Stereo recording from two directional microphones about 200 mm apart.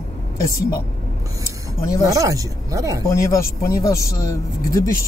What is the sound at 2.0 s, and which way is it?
Speech, 15° right (ahead or behind).